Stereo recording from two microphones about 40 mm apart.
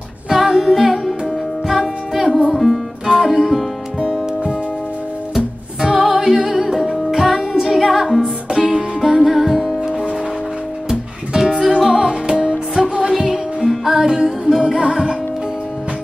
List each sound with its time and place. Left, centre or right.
0.3 s music: centre
3.1 s music: centre
8.2 s music: right
9.2 s music: centre; by 15.1 s right